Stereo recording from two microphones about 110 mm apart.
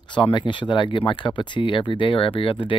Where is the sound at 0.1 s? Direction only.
45° left (ahead or behind).